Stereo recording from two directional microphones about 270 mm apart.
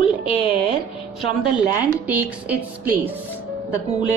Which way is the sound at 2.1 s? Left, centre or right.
Centre.